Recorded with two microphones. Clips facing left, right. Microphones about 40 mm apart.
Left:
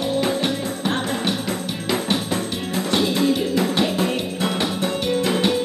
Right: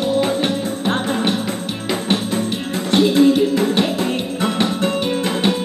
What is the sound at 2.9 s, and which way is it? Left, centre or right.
Music, right.